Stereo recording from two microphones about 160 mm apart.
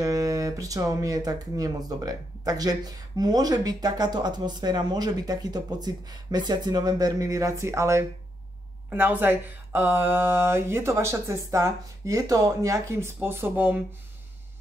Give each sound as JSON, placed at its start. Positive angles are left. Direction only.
{"t": 0.0, "sound": "speech", "side_deg": -20}